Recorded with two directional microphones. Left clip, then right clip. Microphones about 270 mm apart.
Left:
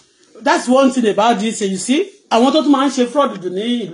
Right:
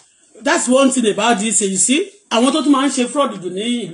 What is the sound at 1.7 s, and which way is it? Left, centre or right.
Speech, right.